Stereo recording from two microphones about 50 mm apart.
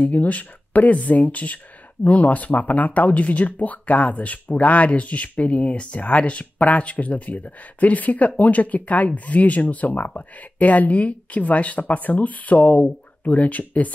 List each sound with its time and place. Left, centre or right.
0.0 s speech: left